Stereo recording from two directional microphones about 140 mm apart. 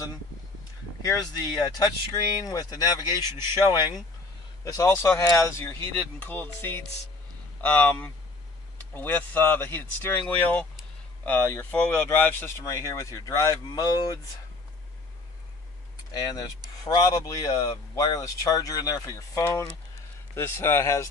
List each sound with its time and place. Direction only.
1.0 s speech: 30° left (ahead or behind)
4.6 s speech: 20° left (ahead or behind)
16.1 s speech: 25° left (ahead or behind)